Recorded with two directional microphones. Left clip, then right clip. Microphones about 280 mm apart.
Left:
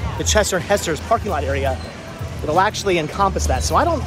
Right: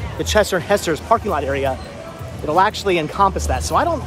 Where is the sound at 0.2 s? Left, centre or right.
Centre.